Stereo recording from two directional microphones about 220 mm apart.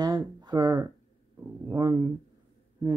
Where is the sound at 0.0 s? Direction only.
20° right (ahead or behind).